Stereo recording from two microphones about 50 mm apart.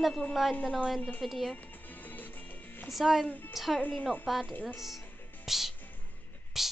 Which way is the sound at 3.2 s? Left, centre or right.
Left.